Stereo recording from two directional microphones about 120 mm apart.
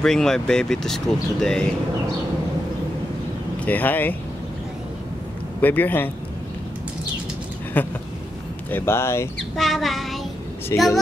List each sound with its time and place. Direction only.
0.0 s speech: 5° left (ahead or behind)
3.6 s speech: 15° left (ahead or behind)
5.6 s speech: 15° left (ahead or behind)
7.8 s speech: 15° left (ahead or behind)
9.6 s speech: centre (ahead or behind)
10.7 s speech: 25° left (ahead or behind)